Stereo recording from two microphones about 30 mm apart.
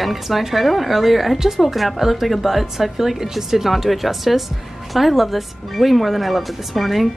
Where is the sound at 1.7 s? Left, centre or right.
Centre.